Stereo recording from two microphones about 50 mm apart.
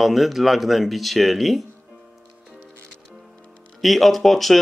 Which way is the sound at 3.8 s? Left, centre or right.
Centre.